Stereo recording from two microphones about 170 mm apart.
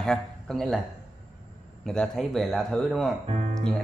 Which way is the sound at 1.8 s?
5° left (ahead or behind).